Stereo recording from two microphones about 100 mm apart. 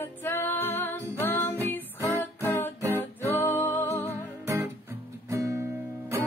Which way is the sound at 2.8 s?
25° right (ahead or behind).